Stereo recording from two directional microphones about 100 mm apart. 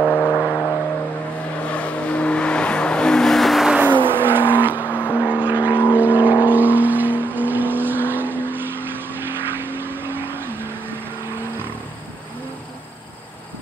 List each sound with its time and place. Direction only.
0.0 s vehicle: 15° left (ahead or behind); by 3.7 s centre (ahead or behind)
4.1 s vehicle: 20° right (ahead or behind)
4.8 s vehicle: 15° left (ahead or behind)
5.3 s vehicle: 15° right (ahead or behind)